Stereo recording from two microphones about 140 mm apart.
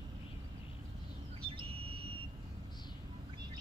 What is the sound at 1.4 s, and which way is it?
Vehicle, 40° right (ahead or behind).